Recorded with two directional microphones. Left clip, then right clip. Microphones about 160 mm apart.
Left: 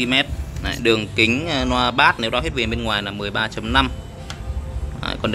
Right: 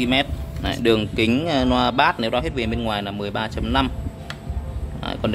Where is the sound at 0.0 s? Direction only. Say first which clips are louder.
Left 2 dB; 10° right (ahead or behind).